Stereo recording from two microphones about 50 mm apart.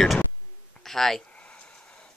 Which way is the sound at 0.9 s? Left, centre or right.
Centre.